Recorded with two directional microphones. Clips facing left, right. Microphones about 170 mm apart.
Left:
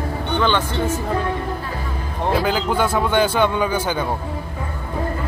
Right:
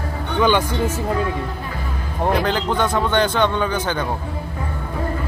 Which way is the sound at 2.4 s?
5° left (ahead or behind).